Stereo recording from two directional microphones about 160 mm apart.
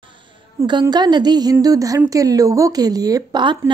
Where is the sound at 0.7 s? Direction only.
30° right (ahead or behind).